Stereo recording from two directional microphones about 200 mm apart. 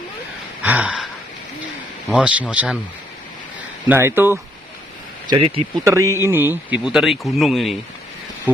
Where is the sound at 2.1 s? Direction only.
5° right (ahead or behind).